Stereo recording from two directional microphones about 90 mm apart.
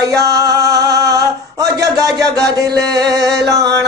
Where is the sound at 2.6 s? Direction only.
50° right (ahead or behind).